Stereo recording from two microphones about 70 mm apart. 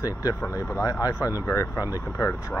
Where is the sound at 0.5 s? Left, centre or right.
Left.